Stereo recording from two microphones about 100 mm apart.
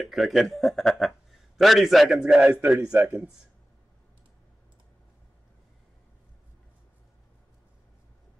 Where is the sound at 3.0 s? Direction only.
20° right (ahead or behind).